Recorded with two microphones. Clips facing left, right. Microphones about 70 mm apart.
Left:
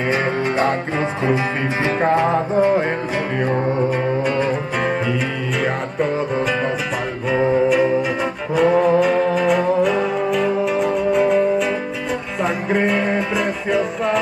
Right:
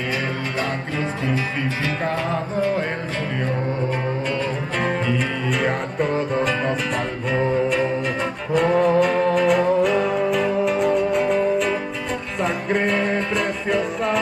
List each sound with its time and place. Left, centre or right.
0.6 s music: left
5.6 s music: centre